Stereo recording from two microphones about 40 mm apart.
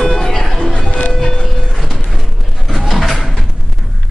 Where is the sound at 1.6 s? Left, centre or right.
Centre.